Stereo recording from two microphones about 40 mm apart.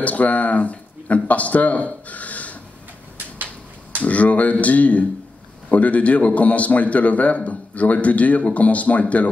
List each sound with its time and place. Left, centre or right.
0.0 s speech: left
4.0 s a man's voice: left